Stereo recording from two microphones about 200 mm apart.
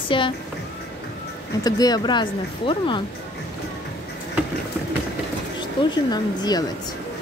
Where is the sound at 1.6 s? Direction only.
20° left (ahead or behind).